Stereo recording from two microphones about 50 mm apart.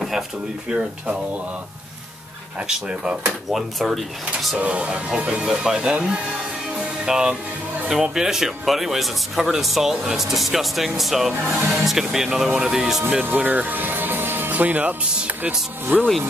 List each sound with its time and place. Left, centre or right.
0.7 s speech: right
2.7 s speech: centre
3.5 s speech: centre
4.6 s speech: right
7.1 s speech: centre
13.2 s speech: right